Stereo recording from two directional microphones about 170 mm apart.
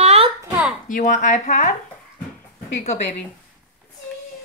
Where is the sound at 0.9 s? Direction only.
50° left (ahead or behind).